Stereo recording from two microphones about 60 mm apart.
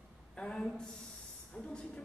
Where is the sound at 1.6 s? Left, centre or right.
Centre.